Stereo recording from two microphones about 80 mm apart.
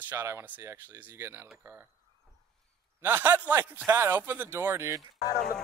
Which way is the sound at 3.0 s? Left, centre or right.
Right.